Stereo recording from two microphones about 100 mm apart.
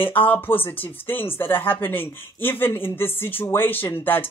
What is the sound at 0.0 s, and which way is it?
A woman's voice, 20° left (ahead or behind).